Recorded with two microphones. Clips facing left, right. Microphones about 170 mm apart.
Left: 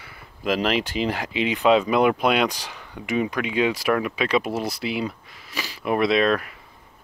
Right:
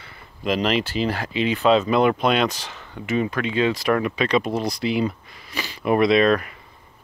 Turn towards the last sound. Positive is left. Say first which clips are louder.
# right 3 dB
turn(degrees=0)  # may be behind; listen again after turning